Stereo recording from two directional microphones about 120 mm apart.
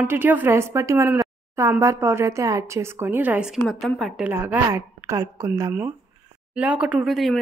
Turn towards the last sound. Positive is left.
turn(degrees=0)  # may be behind; listen again after turning